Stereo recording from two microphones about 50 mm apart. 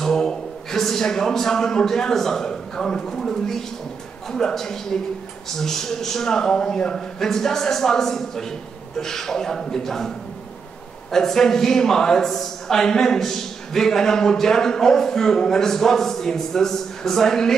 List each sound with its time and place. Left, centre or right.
0.0 s a man's voice: centre